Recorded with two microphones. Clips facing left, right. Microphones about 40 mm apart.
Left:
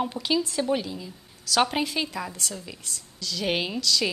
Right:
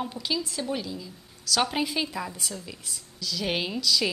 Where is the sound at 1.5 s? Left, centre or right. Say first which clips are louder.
Left 3 dB; centre.